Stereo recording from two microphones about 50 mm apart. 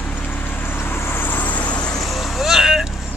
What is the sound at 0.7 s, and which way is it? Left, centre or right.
Vehicle, left.